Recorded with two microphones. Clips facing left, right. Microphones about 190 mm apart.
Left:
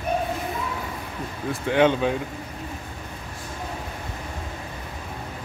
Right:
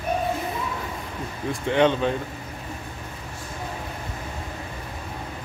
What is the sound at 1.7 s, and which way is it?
Speech, 10° left (ahead or behind).